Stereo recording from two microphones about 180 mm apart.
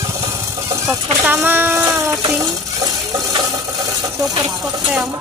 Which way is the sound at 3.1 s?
20° right (ahead or behind).